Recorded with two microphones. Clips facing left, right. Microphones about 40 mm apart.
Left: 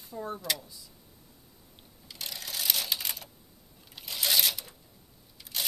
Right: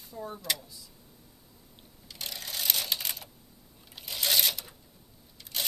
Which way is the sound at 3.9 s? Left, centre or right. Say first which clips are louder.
Even; centre.